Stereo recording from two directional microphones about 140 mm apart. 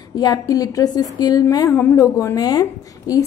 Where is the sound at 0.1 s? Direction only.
25° left (ahead or behind).